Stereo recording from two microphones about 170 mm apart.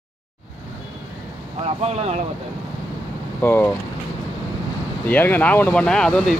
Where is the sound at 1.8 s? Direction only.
40° right (ahead or behind).